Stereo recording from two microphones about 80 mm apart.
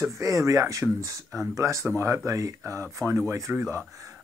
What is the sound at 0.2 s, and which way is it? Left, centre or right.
Speech, right.